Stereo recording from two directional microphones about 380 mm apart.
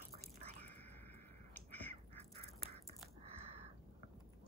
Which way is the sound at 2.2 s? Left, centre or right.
Centre.